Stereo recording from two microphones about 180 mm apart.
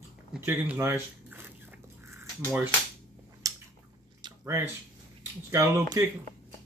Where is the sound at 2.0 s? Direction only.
15° right (ahead or behind).